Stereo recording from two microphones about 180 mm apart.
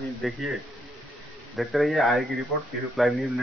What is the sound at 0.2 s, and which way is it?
Speech, centre (ahead or behind).